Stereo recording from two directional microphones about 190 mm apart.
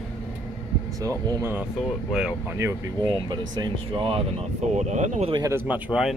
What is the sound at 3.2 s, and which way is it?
Speech, 20° right (ahead or behind).